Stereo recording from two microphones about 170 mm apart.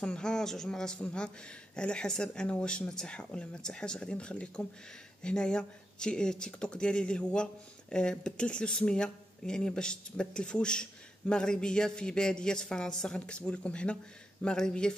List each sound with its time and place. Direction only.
0.0 s speech: 5° left (ahead or behind)